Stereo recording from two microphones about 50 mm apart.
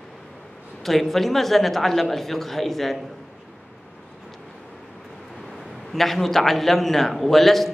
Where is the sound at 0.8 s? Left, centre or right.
Centre.